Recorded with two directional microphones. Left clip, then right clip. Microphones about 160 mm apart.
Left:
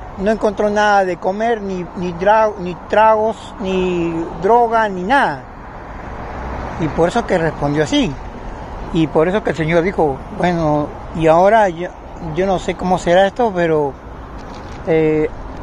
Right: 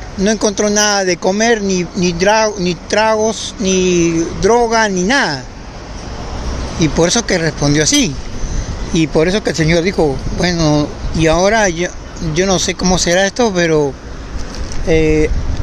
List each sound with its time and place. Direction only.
0.5 s speech: 50° right (ahead or behind)
7.1 s speech: 50° right (ahead or behind)
12.4 s speech: 60° right (ahead or behind)
12.6 s speech: 45° right (ahead or behind)